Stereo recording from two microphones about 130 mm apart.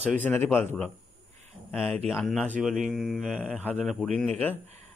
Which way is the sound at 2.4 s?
10° right (ahead or behind).